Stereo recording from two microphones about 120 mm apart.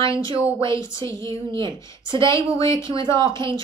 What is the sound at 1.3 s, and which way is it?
A woman's voice, 40° right (ahead or behind).